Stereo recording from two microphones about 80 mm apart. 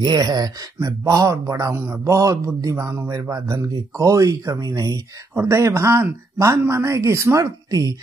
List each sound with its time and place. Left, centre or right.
0.0 s speech: right
1.0 s speech: right
5.3 s speech: right